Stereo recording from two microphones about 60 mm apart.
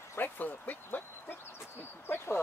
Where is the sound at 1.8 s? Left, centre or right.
Left.